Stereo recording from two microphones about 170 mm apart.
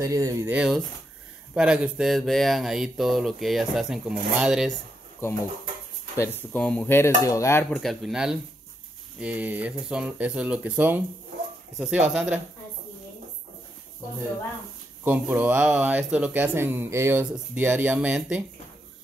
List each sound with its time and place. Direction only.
0.0 s speech: 20° right (ahead or behind)
0.6 s speech: centre (ahead or behind)
5.2 s dishes: 15° left (ahead or behind)
7.8 s speech: centre (ahead or behind)
15.0 s speech: 10° right (ahead or behind)